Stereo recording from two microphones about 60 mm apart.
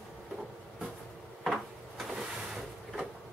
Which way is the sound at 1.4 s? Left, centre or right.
Centre.